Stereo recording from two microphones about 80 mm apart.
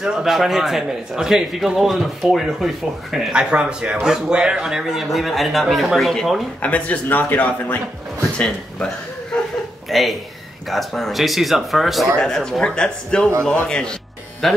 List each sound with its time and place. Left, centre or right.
0.0 s a man's voice: centre
6.6 s a man's voice: centre
8.2 s chuckle: centre
9.8 s a man's voice: centre